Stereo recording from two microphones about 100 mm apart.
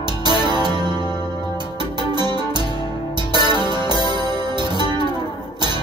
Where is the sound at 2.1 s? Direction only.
45° right (ahead or behind).